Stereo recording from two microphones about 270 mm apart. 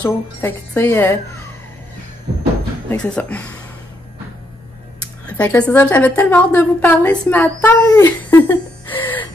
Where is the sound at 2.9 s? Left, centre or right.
Centre.